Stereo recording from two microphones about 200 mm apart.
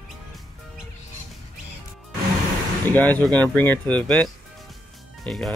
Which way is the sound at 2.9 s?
10° left (ahead or behind).